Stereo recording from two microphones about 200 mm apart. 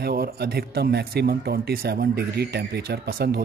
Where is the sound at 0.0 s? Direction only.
50° right (ahead or behind).